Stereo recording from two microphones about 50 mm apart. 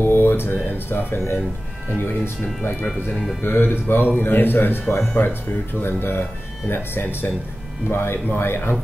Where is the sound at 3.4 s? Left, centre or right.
Left.